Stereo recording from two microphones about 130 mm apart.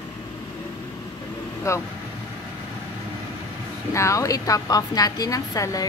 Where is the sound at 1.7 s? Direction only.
25° left (ahead or behind).